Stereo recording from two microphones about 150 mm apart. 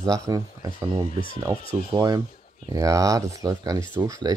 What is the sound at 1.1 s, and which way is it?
Speech, 70° left (ahead or behind).